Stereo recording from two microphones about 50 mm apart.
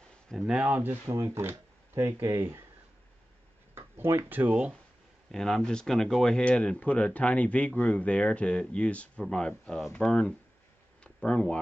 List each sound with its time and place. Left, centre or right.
0.3 s speech: centre
0.7 s speech: right
1.0 s speech: right
3.7 s a sound: right
4.3 s speech: right
5.3 s speech: centre
6.3 s speech: left
11.1 s a sound: centre